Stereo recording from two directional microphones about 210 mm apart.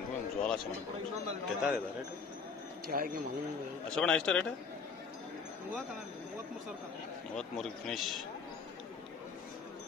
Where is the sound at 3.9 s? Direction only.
5° left (ahead or behind).